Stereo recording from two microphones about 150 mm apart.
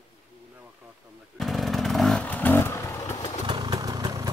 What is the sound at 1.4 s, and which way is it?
Motorcycle, centre (ahead or behind).